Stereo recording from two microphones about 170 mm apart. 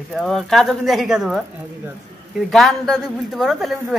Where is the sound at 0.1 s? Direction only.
Centre (ahead or behind).